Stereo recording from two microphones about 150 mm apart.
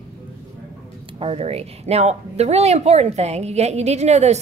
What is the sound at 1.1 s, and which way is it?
Speech, 40° right (ahead or behind).